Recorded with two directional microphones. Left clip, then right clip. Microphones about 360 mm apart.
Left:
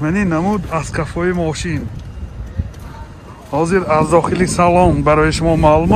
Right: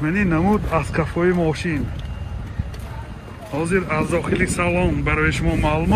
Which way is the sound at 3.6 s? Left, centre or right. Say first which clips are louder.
Left 7 dB; centre.